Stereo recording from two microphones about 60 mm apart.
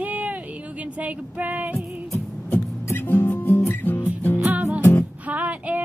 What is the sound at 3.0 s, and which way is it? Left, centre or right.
Music, left.